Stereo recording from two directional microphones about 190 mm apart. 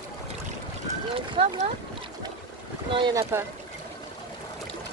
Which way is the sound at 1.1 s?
30° right (ahead or behind).